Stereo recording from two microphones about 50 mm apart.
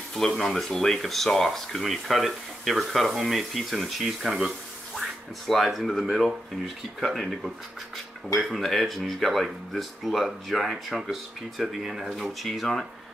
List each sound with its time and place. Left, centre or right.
0.4 s speech: centre